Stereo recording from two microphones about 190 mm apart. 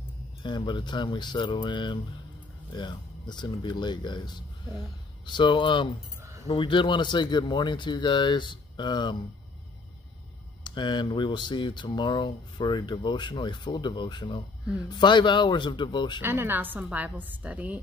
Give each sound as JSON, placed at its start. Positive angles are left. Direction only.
{"t": 0.4, "sound": "speech", "side_deg": 25}
{"t": 10.6, "sound": "speech", "side_deg": 25}
{"t": 16.2, "sound": "a woman's voice", "side_deg": -10}